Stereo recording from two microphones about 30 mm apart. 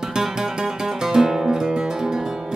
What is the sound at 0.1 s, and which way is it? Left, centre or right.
Music, centre.